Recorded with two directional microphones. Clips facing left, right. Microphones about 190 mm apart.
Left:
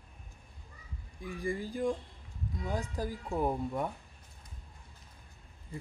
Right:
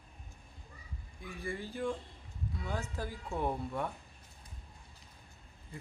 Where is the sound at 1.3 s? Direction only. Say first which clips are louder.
Left 5 dB; 15° left (ahead or behind).